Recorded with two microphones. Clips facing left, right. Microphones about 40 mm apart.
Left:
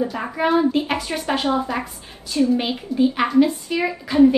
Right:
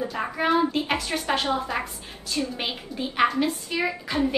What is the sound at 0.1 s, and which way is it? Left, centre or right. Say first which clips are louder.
A woman's voice: left 3 dB; centre.